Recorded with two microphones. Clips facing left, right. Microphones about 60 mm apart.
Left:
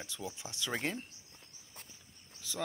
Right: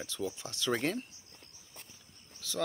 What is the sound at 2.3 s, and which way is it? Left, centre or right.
Cricket, centre.